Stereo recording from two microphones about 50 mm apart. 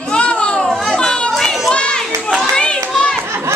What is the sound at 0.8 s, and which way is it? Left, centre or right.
Speech, centre.